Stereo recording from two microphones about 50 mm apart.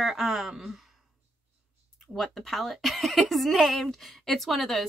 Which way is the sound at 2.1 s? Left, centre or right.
Centre.